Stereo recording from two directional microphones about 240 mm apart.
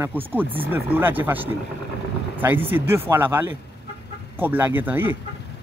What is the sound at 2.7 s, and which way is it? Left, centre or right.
Speech, centre.